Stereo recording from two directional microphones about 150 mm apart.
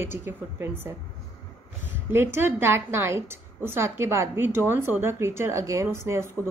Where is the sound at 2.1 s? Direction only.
15° right (ahead or behind).